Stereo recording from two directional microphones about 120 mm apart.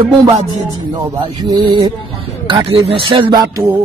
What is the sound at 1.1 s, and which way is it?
Music, 40° right (ahead or behind).